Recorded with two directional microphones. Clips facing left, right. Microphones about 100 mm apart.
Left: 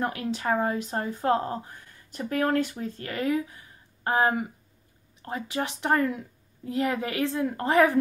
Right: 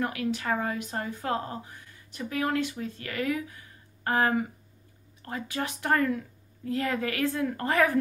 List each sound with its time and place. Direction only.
0.0 s a woman's voice: 30° left (ahead or behind)